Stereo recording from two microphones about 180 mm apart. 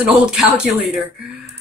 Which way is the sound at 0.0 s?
5° right (ahead or behind).